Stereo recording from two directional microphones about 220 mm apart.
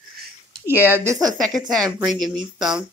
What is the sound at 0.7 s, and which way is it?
Speech, 10° right (ahead or behind).